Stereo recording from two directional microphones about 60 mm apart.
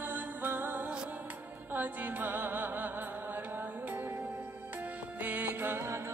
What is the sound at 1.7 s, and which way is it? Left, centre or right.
Music, right.